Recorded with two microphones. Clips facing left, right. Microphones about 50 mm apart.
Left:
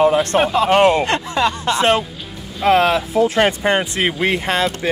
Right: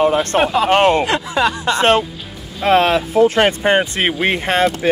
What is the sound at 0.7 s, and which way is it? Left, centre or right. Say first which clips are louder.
Speech: even; right.